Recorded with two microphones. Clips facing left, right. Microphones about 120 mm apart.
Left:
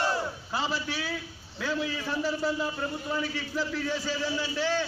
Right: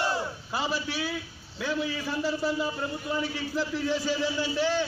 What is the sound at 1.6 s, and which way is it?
A man's voice, 15° right (ahead or behind).